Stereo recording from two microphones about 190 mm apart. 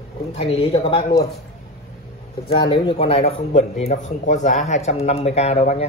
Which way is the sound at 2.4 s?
25° left (ahead or behind).